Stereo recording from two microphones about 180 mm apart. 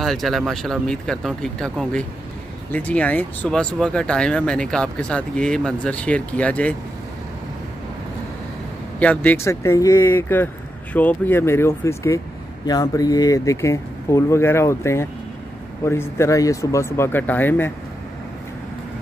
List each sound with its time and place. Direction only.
0.0 s speech: centre (ahead or behind)
9.0 s speech: 10° left (ahead or behind)